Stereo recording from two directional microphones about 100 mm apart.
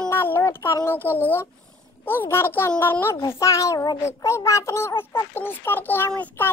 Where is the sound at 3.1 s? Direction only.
35° left (ahead or behind); by 6.4 s 15° left (ahead or behind).